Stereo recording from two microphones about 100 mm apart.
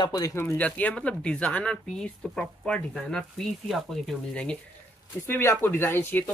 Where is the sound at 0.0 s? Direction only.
40° left (ahead or behind).